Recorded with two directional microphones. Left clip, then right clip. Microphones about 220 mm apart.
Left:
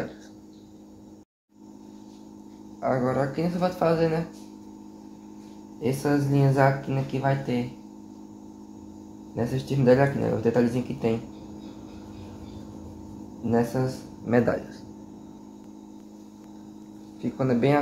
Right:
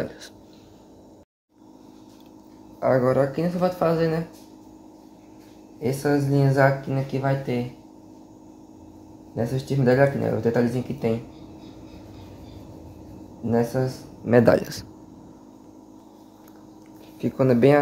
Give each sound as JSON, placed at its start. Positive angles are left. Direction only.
{"t": 2.8, "sound": "speech", "side_deg": -30}
{"t": 5.9, "sound": "speech", "side_deg": -15}
{"t": 9.4, "sound": "speech", "side_deg": -15}
{"t": 13.7, "sound": "speech", "side_deg": -15}
{"t": 14.2, "sound": "speech", "side_deg": -35}
{"t": 17.2, "sound": "speech", "side_deg": -35}